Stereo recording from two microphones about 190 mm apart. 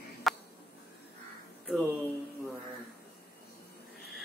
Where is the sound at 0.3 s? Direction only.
Centre (ahead or behind).